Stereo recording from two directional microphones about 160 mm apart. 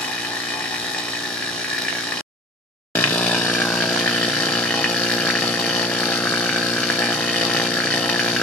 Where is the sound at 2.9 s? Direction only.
10° left (ahead or behind).